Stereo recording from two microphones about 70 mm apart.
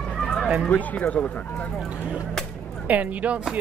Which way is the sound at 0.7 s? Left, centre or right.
Left.